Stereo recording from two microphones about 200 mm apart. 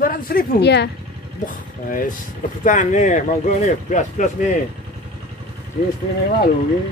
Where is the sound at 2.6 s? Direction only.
40° left (ahead or behind).